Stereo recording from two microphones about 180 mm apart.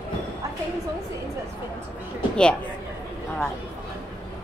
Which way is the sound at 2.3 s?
5° left (ahead or behind).